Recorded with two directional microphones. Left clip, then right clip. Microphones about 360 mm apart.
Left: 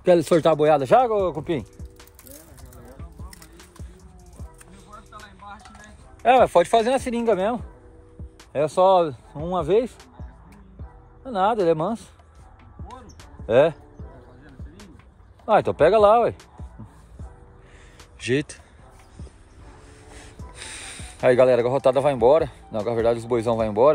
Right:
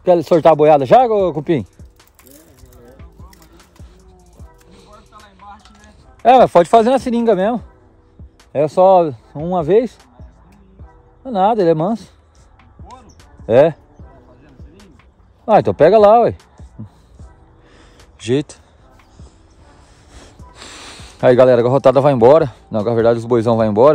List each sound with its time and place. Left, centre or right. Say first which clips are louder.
0.0 s speech: right 6 dB; centre; by 1.7 s right
4.6 s music: right 2 dB; right
5.8 s speech: right 7 dB; right
11.2 s speech: right 7 dB; right
13.5 s speech: right 7 dB; right
15.5 s speech: right 7 dB; right
18.2 s speech: right 6 dB; centre
20.1 s snort: right 3 dB; right
20.5 s a sound: right 3 dB; right
22.3 s speech: right 8 dB; right